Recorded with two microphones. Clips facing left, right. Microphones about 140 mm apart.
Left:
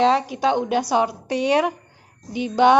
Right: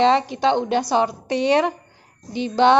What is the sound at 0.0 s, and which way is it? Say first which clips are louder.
A woman's voice: right 1 dB; 5° left (ahead or behind).